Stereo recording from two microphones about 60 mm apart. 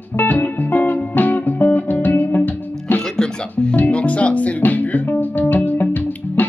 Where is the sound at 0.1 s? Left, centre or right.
Left.